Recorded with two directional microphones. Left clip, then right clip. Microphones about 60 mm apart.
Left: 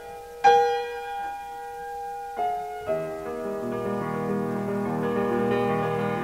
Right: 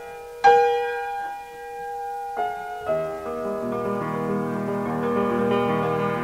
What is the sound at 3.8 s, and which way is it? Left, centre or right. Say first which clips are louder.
Music: right 2 dB; right.